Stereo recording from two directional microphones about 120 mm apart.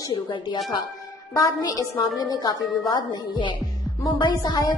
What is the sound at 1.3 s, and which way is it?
A woman's voice, 30° left (ahead or behind).